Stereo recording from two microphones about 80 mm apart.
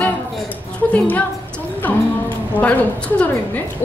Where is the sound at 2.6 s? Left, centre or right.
Centre.